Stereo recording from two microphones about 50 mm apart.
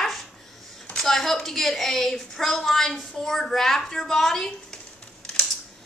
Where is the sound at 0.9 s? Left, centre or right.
Centre.